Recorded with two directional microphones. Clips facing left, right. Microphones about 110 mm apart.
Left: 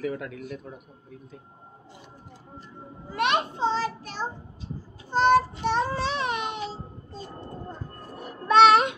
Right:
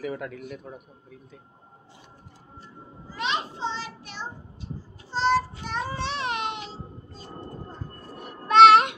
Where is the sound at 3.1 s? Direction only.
60° left (ahead or behind).